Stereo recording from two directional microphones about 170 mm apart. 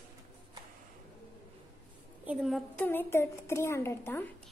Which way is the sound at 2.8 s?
10° left (ahead or behind).